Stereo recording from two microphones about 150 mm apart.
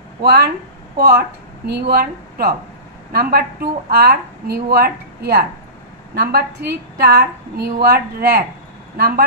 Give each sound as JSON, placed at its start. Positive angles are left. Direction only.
{"t": 0.2, "sound": "a woman's voice", "side_deg": -90}